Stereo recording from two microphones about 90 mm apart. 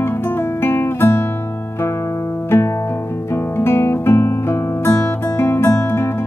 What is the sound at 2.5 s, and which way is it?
Music, 30° left (ahead or behind).